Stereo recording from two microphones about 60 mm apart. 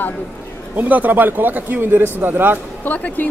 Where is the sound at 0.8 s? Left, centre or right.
Right.